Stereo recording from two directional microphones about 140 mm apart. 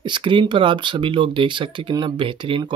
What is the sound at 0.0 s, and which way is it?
Speech, 35° right (ahead or behind).